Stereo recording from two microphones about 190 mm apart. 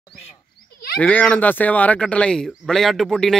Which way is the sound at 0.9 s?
5° left (ahead or behind).